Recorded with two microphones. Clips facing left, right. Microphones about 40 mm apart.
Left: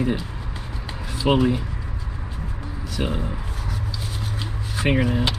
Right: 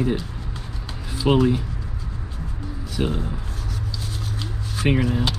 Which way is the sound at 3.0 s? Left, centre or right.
Centre.